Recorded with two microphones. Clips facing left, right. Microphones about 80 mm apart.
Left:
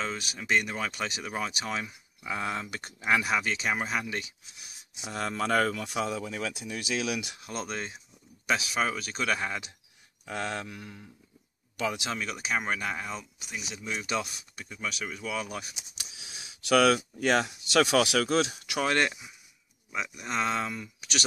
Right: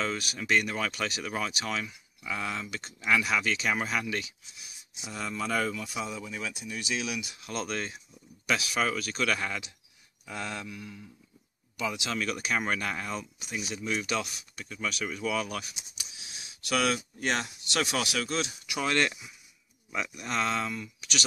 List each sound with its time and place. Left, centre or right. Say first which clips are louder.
0.0 s speech: right 2 dB; centre
1.7 s speech: even; left
3.1 s speech: even; left
5.0 s speech: left 3 dB; left
7.4 s speech: right 5 dB; left
10.2 s a sound: left 3 dB; left
11.8 s speech: left 2 dB; left
12.1 s speech: right 1 dB; centre
14.8 s speech: right 3 dB; centre
16.7 s speech: left 6 dB; left
18.5 s speech: left 3 dB; left
18.9 s speech: even; left